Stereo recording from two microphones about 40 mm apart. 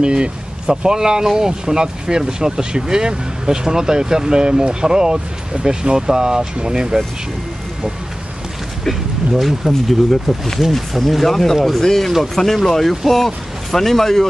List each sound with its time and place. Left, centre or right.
0.0 s speech: right
9.4 s speech: centre